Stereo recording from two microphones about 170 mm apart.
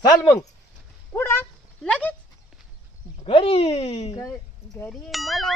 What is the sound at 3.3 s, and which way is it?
Speech, 30° left (ahead or behind).